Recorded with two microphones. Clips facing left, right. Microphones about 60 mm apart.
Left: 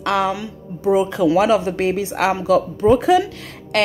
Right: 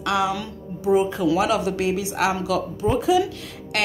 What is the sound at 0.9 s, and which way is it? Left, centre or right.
Speech, left.